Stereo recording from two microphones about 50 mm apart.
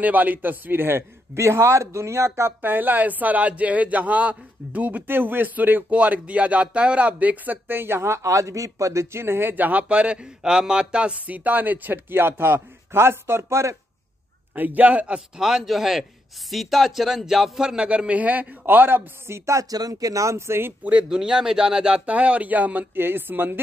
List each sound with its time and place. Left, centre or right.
0.0 s a man's voice: right
2.6 s a man's voice: right
5.0 s a man's voice: right
7.6 s a man's voice: right
9.7 s a man's voice: right
14.5 s a man's voice: right
15.1 s speech: centre; by 19.0 s right
19.2 s a sound: right
20.2 s a man's voice: right
21.1 s speech: centre; by 22.8 s right
22.9 s speech: right